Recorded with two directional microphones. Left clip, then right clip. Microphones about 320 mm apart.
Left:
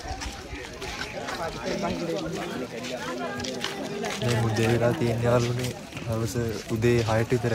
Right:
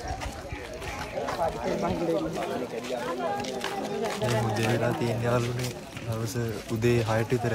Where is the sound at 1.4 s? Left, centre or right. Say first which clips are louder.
Right 2 dB; right.